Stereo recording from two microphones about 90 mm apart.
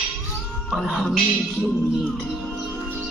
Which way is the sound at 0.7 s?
5° left (ahead or behind).